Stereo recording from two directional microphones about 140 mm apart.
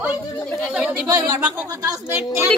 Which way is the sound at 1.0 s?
25° right (ahead or behind).